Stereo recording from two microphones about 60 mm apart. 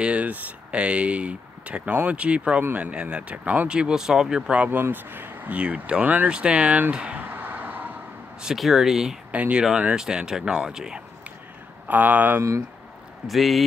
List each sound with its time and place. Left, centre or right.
0.0 s speech: right
4.6 s speech: right; by 7.2 s centre
7.2 s vehicle: right
8.5 s speech: centre
9.3 s speech: right
11.9 s speech: right
12.4 s speech: right
13.3 s speech: centre